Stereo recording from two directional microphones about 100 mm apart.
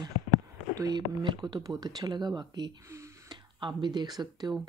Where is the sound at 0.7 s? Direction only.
45° right (ahead or behind).